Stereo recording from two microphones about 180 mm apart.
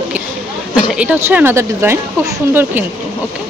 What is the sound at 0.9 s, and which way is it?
Speech, 10° right (ahead or behind).